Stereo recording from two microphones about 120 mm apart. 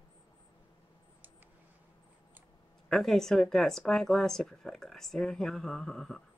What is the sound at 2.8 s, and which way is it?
Speech, centre (ahead or behind).